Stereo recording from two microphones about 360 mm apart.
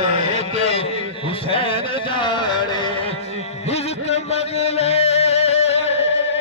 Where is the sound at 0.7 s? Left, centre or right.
Centre.